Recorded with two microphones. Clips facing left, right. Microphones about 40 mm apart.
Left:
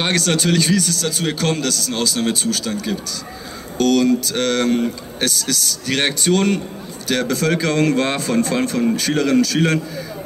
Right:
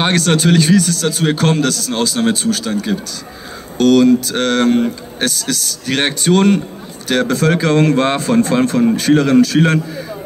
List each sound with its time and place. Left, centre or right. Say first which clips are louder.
0.0 s a man's voice: right 4 dB; right